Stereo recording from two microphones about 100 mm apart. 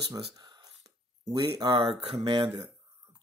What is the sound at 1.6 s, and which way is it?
Speech, 60° right (ahead or behind).